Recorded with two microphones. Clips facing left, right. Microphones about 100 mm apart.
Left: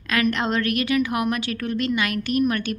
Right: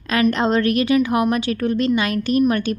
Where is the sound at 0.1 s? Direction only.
30° right (ahead or behind).